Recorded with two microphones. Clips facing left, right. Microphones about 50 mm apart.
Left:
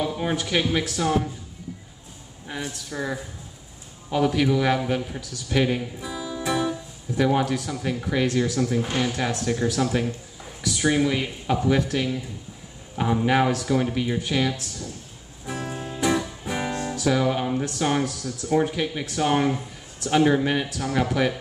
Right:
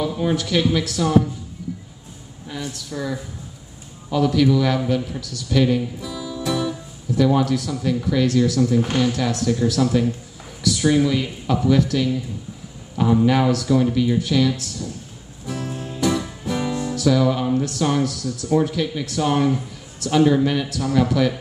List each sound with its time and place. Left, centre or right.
0.2 s speech: left
2.4 s speech: left
15.4 s music: centre
16.8 s speech: left